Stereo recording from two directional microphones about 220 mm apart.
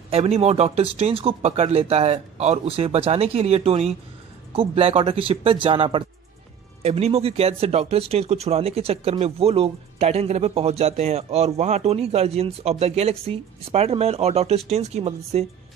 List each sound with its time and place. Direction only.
0.1 s speech: 30° right (ahead or behind)